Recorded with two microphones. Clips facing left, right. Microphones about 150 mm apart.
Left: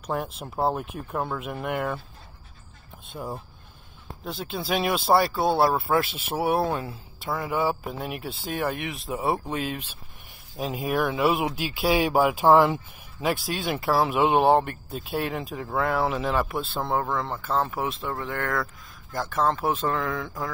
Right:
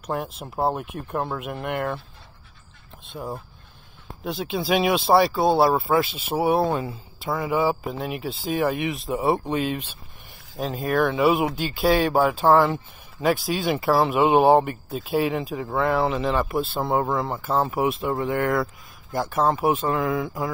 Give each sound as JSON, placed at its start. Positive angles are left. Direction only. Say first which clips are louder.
{"t": 0.0, "sound": "speech", "louder": "right 1 dB", "side_deg": 0}
{"t": 3.2, "sound": "speech", "louder": "right 2 dB", "side_deg": -10}
{"t": 6.7, "sound": "speech", "louder": "right 3 dB", "side_deg": -10}
{"t": 13.2, "sound": "speech", "louder": "right 4 dB", "side_deg": 0}
{"t": 17.3, "sound": "speech", "louder": "right 3 dB", "side_deg": -20}